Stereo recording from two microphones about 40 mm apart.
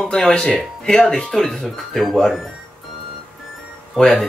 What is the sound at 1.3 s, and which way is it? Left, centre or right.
Speech, centre.